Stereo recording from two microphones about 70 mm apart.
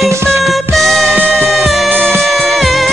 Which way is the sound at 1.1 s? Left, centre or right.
Right.